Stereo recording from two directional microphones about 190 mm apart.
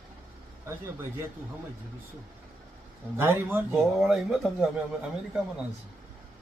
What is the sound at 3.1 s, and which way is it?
Speech, 10° right (ahead or behind).